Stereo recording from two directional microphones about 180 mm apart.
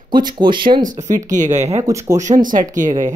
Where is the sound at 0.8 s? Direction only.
45° right (ahead or behind).